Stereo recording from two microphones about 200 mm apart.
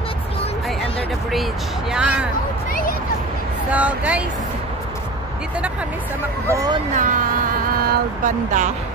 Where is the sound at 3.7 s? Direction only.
5° right (ahead or behind).